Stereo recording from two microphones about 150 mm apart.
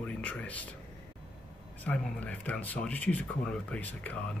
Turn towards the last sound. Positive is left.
turn(degrees=10)  # may be behind; listen again after turning